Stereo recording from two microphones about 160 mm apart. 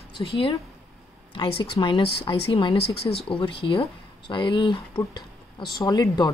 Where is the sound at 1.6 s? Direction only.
30° left (ahead or behind).